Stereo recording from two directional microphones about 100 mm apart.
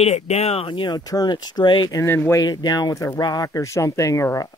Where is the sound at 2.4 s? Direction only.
40° left (ahead or behind).